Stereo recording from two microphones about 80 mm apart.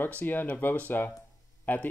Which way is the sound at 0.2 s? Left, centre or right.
Left.